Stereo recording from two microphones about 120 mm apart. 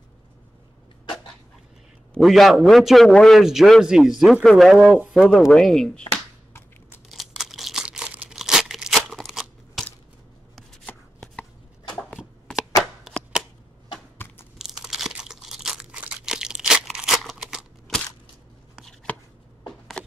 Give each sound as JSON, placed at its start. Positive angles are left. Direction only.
{"t": 2.1, "sound": "a man's voice", "side_deg": 0}
{"t": 7.1, "sound": "crumpling", "side_deg": 0}
{"t": 10.9, "sound": "chopping", "side_deg": 10}
{"t": 11.9, "sound": "a sound", "side_deg": 10}
{"t": 14.1, "sound": "crunch", "side_deg": 15}
{"t": 14.6, "sound": "crunch", "side_deg": -5}
{"t": 19.1, "sound": "chopping", "side_deg": 10}
{"t": 20.0, "sound": "shuffling cards", "side_deg": 10}